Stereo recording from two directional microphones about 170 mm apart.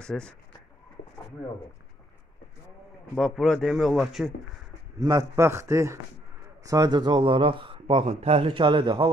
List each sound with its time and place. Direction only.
0.0 s speech: 5° left (ahead or behind)
3.2 s speech: 5° left (ahead or behind)
4.9 s a man's voice: 20° right (ahead or behind)